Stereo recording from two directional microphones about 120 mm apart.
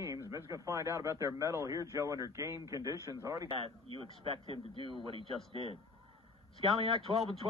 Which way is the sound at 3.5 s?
50° right (ahead or behind).